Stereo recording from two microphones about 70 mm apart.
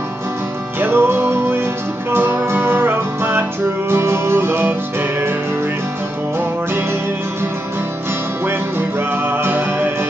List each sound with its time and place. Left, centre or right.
0.7 s music: right
9.3 s music: right